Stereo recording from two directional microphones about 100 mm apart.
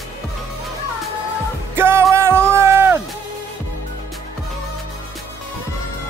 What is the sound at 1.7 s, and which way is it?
Music, 25° right (ahead or behind).